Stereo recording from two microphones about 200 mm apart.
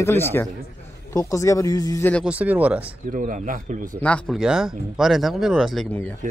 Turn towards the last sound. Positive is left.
turn(degrees=5)  # may be behind; listen again after turning